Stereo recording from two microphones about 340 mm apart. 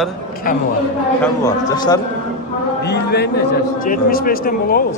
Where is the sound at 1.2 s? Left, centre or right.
Centre.